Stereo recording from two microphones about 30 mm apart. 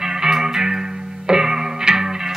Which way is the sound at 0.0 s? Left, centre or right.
Centre.